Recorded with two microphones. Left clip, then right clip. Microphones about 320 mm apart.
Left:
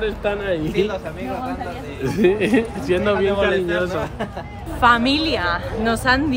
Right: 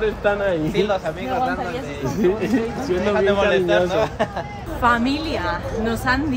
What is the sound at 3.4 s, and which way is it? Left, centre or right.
Speech, right.